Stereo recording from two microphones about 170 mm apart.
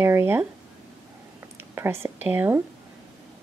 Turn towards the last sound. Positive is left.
turn(degrees=-10)  # may be behind; listen again after turning